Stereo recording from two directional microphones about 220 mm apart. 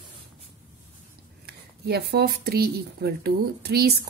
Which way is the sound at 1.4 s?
45° right (ahead or behind).